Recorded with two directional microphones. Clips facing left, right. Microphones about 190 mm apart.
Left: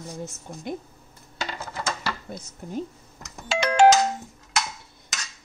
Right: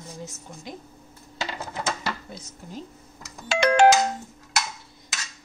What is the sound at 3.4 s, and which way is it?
Music, 60° right (ahead or behind).